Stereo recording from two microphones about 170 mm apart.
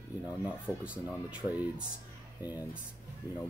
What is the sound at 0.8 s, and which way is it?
Speech, 5° right (ahead or behind).